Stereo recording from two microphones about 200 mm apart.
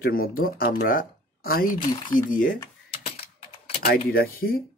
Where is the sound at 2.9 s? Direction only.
30° left (ahead or behind).